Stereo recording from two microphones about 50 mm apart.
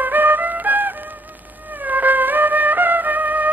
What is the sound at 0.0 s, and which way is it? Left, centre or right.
Music, right.